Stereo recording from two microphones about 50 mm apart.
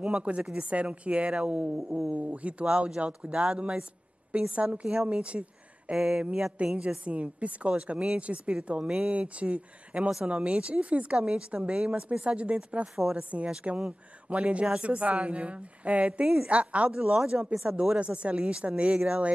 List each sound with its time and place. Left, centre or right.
0.0 s speech: right
5.9 s a woman's voice: centre
6.6 s speech: right
12.8 s a woman's voice: centre
13.2 s speech: right